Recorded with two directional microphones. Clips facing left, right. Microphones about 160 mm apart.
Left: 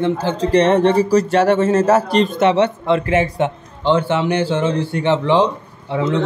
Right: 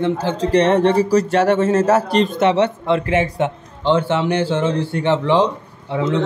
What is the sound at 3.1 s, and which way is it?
Speech, 35° left (ahead or behind).